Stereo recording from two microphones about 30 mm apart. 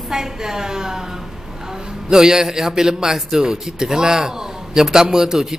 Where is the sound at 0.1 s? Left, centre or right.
Centre.